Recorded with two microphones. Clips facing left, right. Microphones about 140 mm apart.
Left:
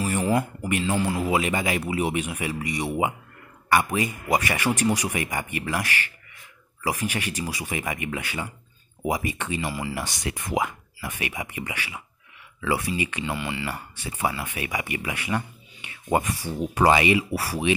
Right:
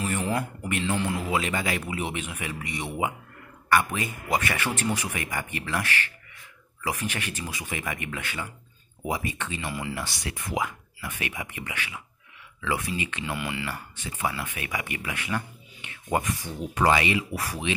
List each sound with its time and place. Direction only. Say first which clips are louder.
0.0 s speech: left 4 dB; 5° left (ahead or behind)
9.9 s speech: left 3 dB; 20° left (ahead or behind)
13.2 s speech: left 2 dB; centre (ahead or behind)
13.7 s speech: left 3 dB; 10° left (ahead or behind)